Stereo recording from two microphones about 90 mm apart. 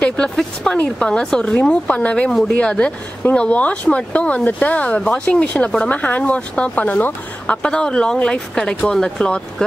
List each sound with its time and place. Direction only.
0.0 s speech: 10° left (ahead or behind)